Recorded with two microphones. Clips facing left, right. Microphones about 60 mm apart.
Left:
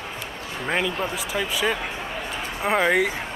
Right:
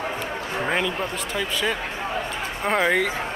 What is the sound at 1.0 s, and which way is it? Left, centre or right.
Speech, centre.